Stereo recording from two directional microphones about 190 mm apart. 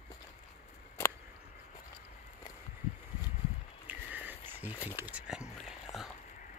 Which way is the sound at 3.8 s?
10° right (ahead or behind).